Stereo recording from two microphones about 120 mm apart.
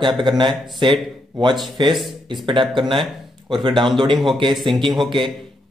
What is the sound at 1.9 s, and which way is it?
Speech, centre (ahead or behind).